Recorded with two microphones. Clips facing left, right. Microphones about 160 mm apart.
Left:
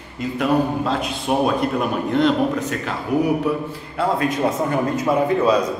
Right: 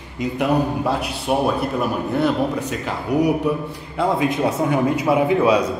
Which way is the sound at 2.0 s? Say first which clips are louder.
Left 3 dB; 10° right (ahead or behind).